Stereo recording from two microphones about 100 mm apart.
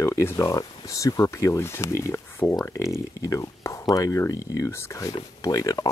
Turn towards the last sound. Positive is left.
turn(degrees=40)  # may be behind; listen again after turning